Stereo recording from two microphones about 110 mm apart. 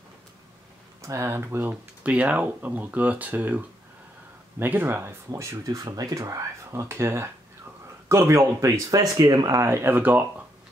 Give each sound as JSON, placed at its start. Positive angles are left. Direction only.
{"t": 1.0, "sound": "speech", "side_deg": -25}